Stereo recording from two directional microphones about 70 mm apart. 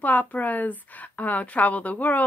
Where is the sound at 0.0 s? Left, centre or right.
Left.